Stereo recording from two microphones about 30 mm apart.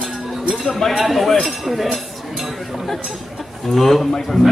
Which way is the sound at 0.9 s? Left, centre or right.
Centre.